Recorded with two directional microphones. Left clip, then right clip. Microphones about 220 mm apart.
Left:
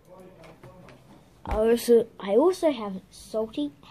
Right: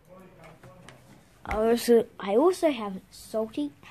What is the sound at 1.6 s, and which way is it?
A woman's voice, 20° right (ahead or behind).